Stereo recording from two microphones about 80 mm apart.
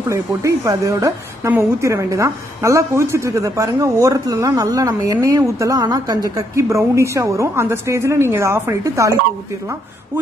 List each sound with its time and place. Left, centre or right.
0.1 s a woman's voice: right
6.5 s a woman's voice: right